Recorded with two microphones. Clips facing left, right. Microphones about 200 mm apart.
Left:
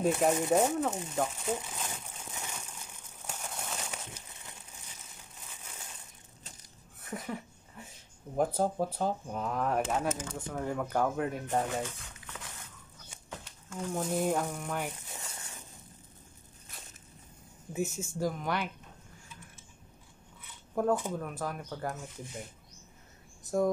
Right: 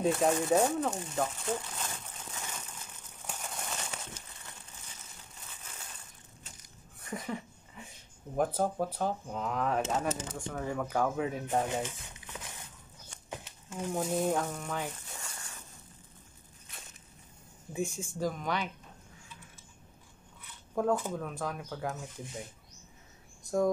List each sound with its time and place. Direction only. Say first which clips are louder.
0.0 s crumpling: even; 5° left (ahead or behind)
5.6 s crushing: left 1 dB; 10° left (ahead or behind)
7.0 s a sound: right 1 dB; centre (ahead or behind)
8.4 s speech: left 1 dB; 10° left (ahead or behind)
11.6 s a sound: right 1 dB; 20° right (ahead or behind)
13.9 s speech: even; centre (ahead or behind)
15.2 s a sound: left 1 dB; 20° left (ahead or behind)
17.7 s speech: left 1 dB; 5° left (ahead or behind)
20.7 s speech: left 1 dB; 5° left (ahead or behind)
23.4 s cricket: even; 5° left (ahead or behind)